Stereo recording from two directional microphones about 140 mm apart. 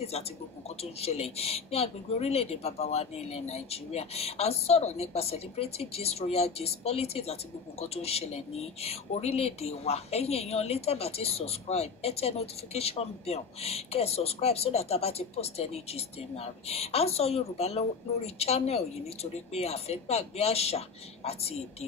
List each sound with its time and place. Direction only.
1.0 s speech: 45° left (ahead or behind)